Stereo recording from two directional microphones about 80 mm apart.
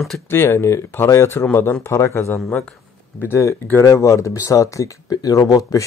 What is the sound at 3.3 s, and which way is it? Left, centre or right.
Speech, left.